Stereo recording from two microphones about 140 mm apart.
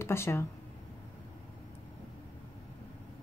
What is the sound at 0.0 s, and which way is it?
Speech, 20° left (ahead or behind).